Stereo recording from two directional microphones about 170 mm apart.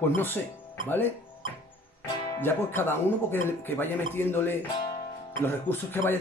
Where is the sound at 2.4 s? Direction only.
15° left (ahead or behind).